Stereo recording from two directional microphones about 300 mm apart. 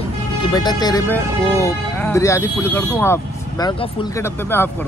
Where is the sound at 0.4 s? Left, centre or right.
Centre.